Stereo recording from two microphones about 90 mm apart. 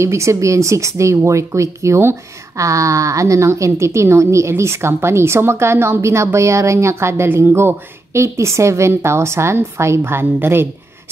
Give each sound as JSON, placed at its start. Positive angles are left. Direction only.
{"t": 0.0, "sound": "speech", "side_deg": -30}